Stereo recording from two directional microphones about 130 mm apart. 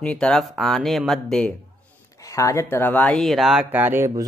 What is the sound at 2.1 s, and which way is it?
Speech, 25° left (ahead or behind).